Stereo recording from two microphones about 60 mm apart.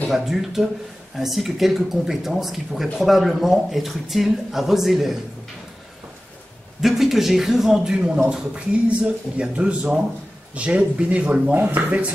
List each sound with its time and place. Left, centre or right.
0.1 s speech: centre
6.8 s speech: centre; by 12.1 s right